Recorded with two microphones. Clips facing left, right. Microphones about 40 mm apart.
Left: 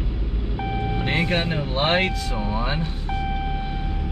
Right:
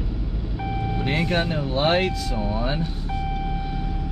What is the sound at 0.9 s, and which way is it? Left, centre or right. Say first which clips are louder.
Speech: even; left.